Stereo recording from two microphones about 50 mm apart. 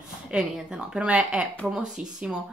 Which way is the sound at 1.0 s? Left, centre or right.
Right.